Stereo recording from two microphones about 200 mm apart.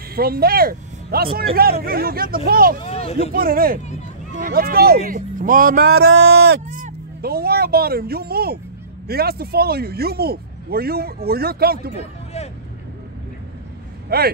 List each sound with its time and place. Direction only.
0.1 s speech: 50° right (ahead or behind)
2.8 s speech: 30° left (ahead or behind)
3.3 s speech: 45° right (ahead or behind)
6.7 s speech: 45° right (ahead or behind)
14.0 s speech: 50° right (ahead or behind)